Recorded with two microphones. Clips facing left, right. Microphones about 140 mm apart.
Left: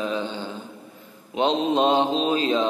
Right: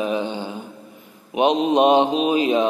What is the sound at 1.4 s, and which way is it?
Mantra, 15° right (ahead or behind).